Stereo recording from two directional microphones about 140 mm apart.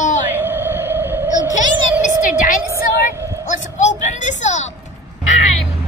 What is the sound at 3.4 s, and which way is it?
A woman's voice, 60° left (ahead or behind).